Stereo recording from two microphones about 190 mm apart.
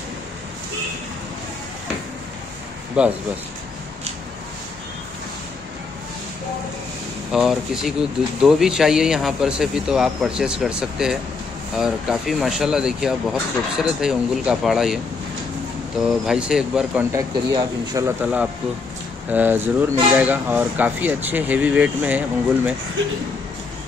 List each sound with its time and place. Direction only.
3.0 s speech: 5° right (ahead or behind)
7.3 s speech: 5° right (ahead or behind)
16.3 s speech: 5° right (ahead or behind)
17.1 s speech: 20° right (ahead or behind)
18.2 s speech: 5° right (ahead or behind)